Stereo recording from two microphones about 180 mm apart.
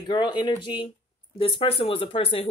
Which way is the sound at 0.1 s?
25° left (ahead or behind).